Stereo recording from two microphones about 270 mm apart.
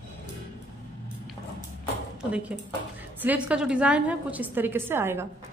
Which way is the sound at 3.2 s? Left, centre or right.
Centre.